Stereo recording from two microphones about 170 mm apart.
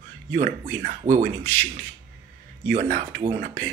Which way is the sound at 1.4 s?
10° left (ahead or behind).